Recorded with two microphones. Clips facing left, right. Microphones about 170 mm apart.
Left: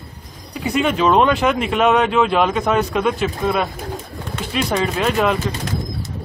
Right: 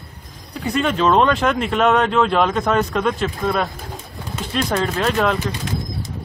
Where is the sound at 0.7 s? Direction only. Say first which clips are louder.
Left 1 dB; 5° left (ahead or behind).